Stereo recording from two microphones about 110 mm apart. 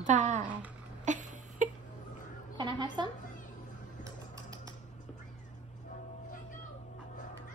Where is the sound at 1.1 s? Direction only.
90° right.